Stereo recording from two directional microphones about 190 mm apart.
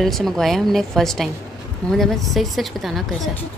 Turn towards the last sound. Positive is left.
turn(degrees=0)  # may be behind; listen again after turning